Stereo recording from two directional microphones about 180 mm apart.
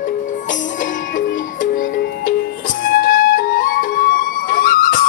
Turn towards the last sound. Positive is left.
turn(degrees=50)  # may be behind; listen again after turning